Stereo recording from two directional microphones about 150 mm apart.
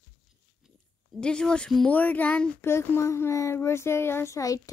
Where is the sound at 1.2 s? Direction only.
5° left (ahead or behind).